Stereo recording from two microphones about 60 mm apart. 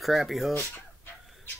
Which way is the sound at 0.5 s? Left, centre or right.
Left.